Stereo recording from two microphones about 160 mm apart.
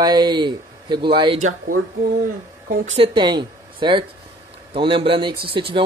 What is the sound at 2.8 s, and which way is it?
Speech, 35° right (ahead or behind).